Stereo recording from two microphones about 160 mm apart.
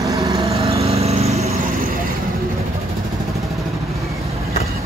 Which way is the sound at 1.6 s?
60° right (ahead or behind).